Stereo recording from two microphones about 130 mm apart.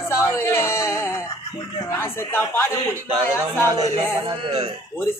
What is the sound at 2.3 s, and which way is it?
Speech, 15° left (ahead or behind).